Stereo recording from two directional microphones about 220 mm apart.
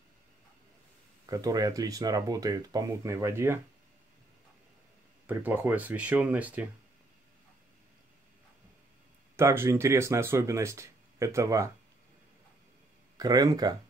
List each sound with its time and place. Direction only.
1.2 s speech: 15° right (ahead or behind)
5.2 s speech: 10° right (ahead or behind)
9.4 s speech: 10° right (ahead or behind)
13.2 s speech: 15° right (ahead or behind)